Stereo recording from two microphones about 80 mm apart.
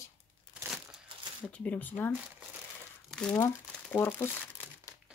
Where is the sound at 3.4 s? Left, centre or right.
Left.